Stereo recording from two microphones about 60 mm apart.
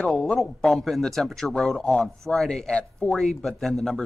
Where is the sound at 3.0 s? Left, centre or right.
Centre.